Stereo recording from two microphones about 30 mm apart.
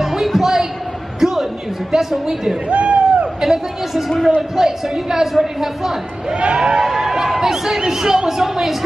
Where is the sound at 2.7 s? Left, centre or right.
Right.